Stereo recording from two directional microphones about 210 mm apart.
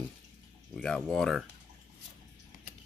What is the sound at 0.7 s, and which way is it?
Speech, 5° left (ahead or behind).